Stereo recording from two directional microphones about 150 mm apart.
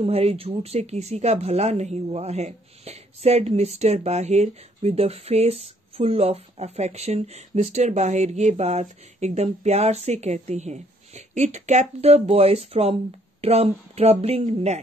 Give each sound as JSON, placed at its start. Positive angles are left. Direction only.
{"t": 0.0, "sound": "speech", "side_deg": -40}